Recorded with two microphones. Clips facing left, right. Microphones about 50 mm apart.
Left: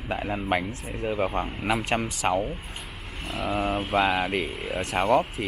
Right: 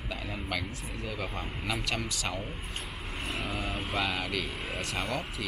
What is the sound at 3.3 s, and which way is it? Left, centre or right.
Speech, centre.